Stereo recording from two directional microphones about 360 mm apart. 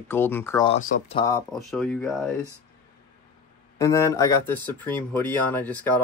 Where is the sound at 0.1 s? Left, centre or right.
Centre.